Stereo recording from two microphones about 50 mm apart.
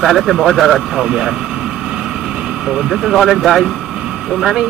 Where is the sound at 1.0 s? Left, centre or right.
Centre.